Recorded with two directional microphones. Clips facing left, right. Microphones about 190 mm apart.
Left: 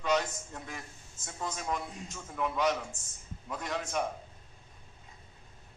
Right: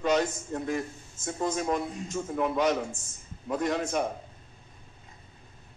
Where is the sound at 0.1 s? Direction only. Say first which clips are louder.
Right 2 dB; 50° right (ahead or behind).